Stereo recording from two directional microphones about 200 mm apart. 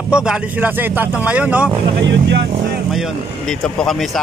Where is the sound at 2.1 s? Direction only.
60° right (ahead or behind).